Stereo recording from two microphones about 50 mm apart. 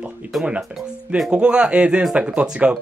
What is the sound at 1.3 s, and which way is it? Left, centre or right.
Speech, centre.